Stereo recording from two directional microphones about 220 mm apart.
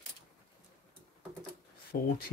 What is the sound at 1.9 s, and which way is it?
Speech, 45° left (ahead or behind).